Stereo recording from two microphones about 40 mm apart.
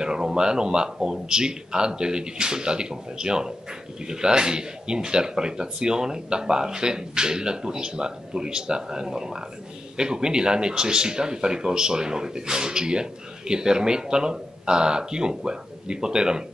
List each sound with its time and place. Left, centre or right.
0.0 s speech: centre